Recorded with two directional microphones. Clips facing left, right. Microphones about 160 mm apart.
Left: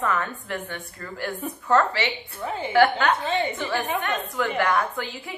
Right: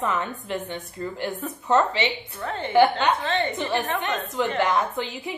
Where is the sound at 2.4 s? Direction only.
5° left (ahead or behind).